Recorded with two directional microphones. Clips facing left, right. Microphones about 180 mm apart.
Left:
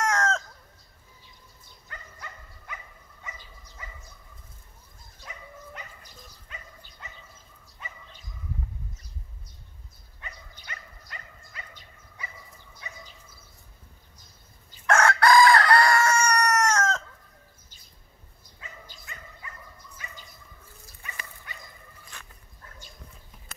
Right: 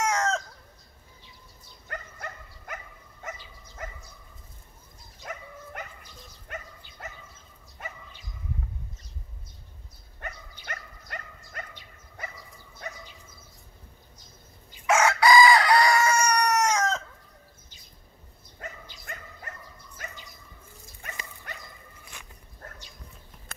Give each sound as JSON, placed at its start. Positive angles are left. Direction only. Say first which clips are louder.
{"t": 0.0, "sound": "chicken", "louder": "even", "side_deg": 0}
{"t": 1.9, "sound": "dog", "louder": "right 6 dB", "side_deg": -50}
{"t": 5.2, "sound": "dog", "louder": "right 4 dB", "side_deg": -50}
{"t": 7.8, "sound": "dog", "louder": "right 5 dB", "side_deg": -50}
{"t": 10.2, "sound": "dog", "louder": "right 5 dB", "side_deg": -50}
{"t": 14.9, "sound": "chicken", "louder": "even", "side_deg": -5}
{"t": 19.1, "sound": "dog", "louder": "right 7 dB", "side_deg": -55}